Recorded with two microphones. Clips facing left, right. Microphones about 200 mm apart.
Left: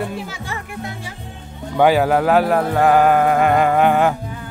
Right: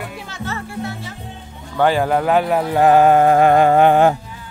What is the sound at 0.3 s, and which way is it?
Music, 15° left (ahead or behind).